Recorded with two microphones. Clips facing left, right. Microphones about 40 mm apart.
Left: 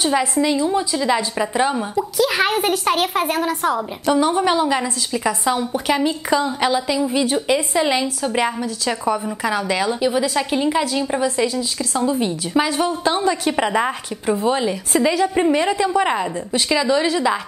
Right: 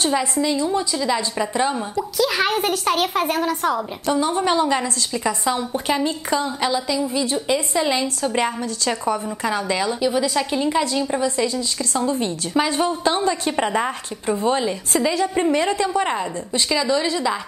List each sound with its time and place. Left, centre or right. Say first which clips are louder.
0.0 s a woman's voice: left 2 dB; centre
5.7 s a woman's voice: left 2 dB; left